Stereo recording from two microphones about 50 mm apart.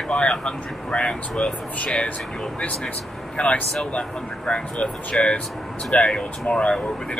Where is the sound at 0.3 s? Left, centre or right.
Centre.